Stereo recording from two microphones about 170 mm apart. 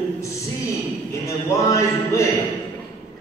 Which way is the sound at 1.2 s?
20° left (ahead or behind).